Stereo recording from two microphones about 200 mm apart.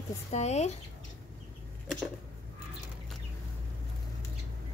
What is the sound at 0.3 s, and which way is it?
Speech, 35° left (ahead or behind).